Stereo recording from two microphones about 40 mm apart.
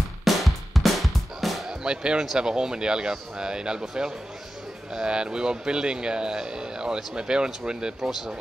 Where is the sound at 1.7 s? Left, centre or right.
Right.